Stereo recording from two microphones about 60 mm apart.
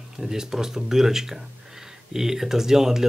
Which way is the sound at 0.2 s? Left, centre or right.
Centre.